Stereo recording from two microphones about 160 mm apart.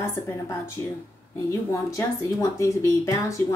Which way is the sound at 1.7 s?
20° left (ahead or behind).